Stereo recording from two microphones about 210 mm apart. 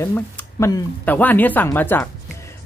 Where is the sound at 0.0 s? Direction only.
15° left (ahead or behind).